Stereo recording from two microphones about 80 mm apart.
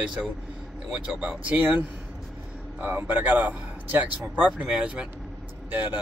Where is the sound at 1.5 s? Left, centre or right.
Right.